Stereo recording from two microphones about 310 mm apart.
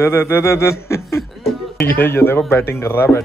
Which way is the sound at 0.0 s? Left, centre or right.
Centre.